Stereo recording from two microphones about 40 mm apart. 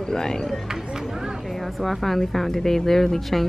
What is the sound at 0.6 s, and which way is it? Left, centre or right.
Run, centre.